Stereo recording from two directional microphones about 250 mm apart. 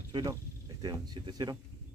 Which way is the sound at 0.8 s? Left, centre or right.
Centre.